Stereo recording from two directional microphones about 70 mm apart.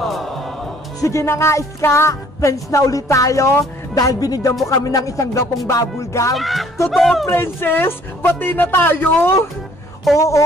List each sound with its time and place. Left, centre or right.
0.0 s music: centre
1.0 s music: left
3.9 s music: left
6.3 s speech: centre
7.2 s speech: left
10.1 s music: left